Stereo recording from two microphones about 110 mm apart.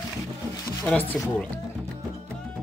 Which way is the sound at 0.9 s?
15° left (ahead or behind).